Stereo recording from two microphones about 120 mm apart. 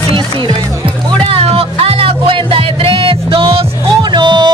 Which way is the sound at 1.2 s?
55° right (ahead or behind).